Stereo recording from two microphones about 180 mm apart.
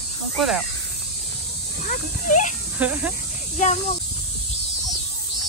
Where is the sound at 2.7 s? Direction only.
10° right (ahead or behind).